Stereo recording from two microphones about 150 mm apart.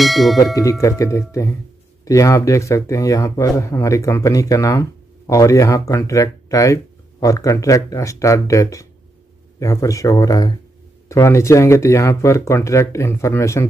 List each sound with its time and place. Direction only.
0.0 s speech: centre (ahead or behind)
0.6 s speech: 20° left (ahead or behind)